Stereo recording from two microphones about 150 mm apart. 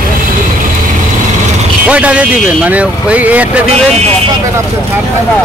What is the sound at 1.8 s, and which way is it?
Speech, 10° right (ahead or behind).